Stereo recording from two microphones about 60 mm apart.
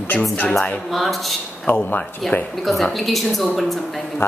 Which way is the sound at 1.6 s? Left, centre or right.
Left.